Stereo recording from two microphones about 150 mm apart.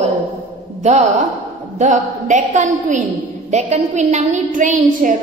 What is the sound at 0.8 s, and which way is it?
A woman's voice, 50° right (ahead or behind).